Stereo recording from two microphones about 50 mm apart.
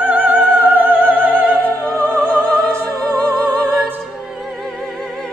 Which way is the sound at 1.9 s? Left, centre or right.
Left.